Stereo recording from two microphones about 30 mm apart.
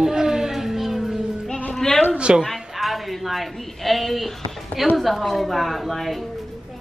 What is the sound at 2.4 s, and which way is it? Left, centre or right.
A woman's voice, centre.